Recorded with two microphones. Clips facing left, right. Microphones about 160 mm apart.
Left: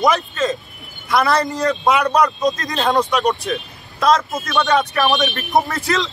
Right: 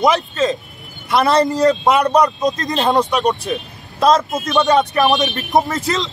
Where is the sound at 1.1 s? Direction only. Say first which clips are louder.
Right 3 dB; 25° right (ahead or behind).